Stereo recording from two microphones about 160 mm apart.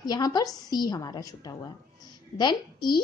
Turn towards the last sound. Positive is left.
turn(degrees=25)  # may be behind; listen again after turning